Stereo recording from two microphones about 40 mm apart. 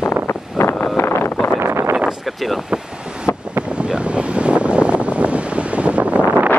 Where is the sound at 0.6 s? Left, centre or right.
Left.